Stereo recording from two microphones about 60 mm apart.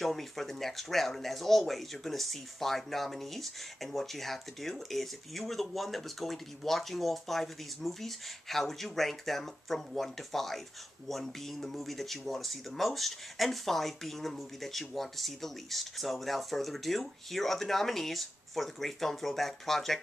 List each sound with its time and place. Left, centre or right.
0.0 s speech: centre